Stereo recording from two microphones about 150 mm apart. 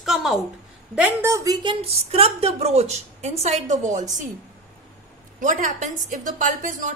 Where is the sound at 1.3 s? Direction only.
25° right (ahead or behind); by 4.0 s 55° right (ahead or behind).